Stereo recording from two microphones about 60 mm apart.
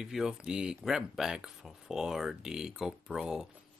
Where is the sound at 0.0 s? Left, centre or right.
Centre.